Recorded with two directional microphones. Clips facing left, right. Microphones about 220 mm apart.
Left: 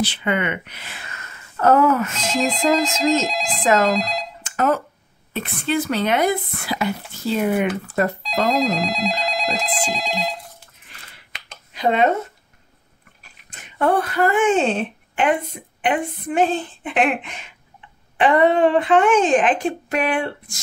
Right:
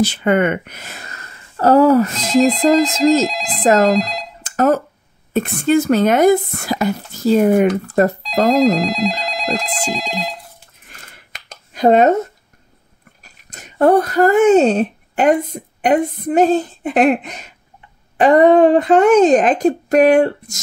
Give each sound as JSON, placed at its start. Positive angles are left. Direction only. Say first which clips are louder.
{"t": 0.0, "sound": "speech", "louder": "right 7 dB", "side_deg": -45}
{"t": 2.3, "sound": "speech", "louder": "right 7 dB", "side_deg": 0}
{"t": 4.4, "sound": "a sound", "louder": "right 6 dB", "side_deg": -40}
{"t": 5.3, "sound": "speech", "louder": "right 8 dB", "side_deg": -45}
{"t": 8.2, "sound": "speech", "louder": "right 6 dB", "side_deg": 0}
{"t": 10.9, "sound": "a sound", "louder": "right 3 dB", "side_deg": -45}
{"t": 13.2, "sound": "speech", "louder": "right 5 dB", "side_deg": -40}